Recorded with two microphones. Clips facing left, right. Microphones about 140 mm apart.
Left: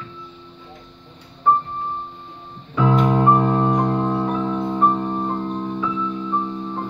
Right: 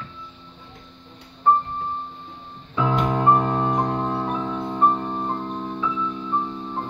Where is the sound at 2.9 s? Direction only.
10° left (ahead or behind).